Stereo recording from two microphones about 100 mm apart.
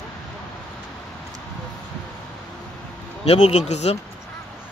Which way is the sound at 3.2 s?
90° left.